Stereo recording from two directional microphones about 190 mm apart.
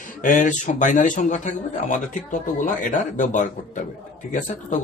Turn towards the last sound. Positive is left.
turn(degrees=40)  # may be behind; listen again after turning